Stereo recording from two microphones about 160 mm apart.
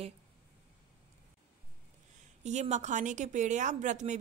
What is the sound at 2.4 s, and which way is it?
A woman's voice, 45° right (ahead or behind).